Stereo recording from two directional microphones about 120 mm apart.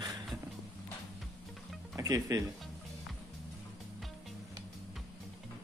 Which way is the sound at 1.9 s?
30° right (ahead or behind).